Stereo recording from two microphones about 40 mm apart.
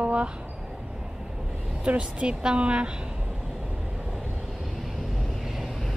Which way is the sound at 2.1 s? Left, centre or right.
Right.